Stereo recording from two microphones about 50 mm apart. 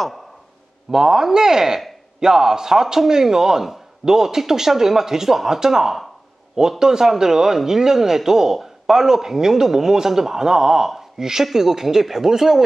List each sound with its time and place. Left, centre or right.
0.9 s a man's voice: centre